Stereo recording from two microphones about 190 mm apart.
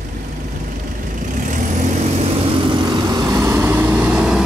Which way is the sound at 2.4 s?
25° right (ahead or behind).